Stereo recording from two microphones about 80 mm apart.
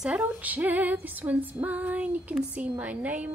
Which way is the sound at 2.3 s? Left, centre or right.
Centre.